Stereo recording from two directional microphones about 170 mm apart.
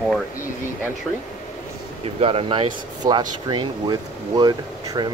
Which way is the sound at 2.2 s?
35° right (ahead or behind).